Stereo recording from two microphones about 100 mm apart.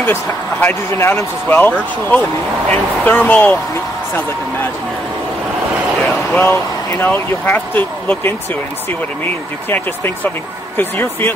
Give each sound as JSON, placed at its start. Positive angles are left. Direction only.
{"t": 0.0, "sound": "speech", "side_deg": 20}
{"t": 6.0, "sound": "speech", "side_deg": 20}